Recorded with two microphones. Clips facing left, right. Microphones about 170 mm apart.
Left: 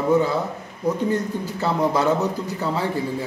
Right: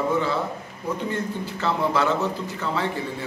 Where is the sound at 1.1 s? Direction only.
40° left (ahead or behind).